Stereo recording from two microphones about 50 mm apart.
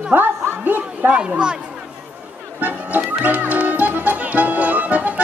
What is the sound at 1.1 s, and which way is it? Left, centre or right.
Speech, centre.